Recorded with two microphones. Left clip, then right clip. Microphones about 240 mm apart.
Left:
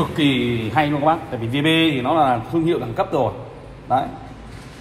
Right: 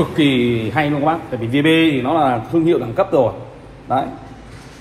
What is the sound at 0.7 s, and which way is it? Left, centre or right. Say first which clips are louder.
Speech: left 3 dB; centre.